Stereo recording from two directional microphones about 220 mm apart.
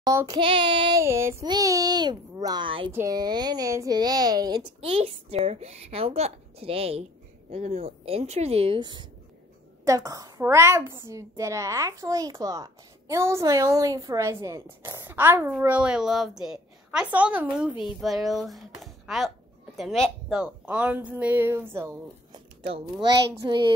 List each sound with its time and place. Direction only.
0.0 s child singing: 15° right (ahead or behind)
2.9 s a woman's voice: 15° right (ahead or behind)
22.7 s a woman's voice: 25° right (ahead or behind)